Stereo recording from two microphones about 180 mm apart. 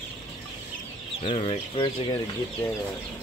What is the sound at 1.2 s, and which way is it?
Speech, 35° left (ahead or behind).